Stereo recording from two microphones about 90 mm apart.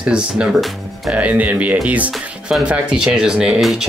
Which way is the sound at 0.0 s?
10° right (ahead or behind).